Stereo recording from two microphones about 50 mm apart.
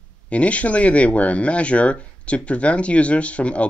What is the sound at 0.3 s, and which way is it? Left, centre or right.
Speech, left.